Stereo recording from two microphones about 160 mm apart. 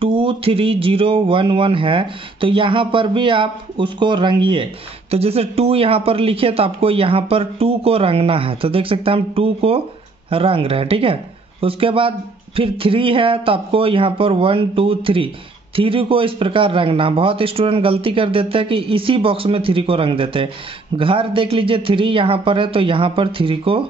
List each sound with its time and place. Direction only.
0.0 s a man's voice: 35° right (ahead or behind)